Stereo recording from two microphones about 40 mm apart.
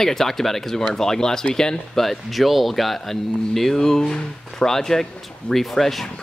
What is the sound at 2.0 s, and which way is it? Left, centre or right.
Speech, centre.